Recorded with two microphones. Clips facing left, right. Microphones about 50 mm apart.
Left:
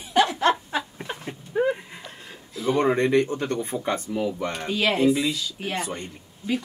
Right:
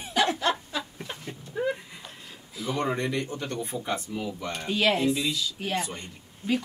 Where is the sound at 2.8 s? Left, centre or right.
Left.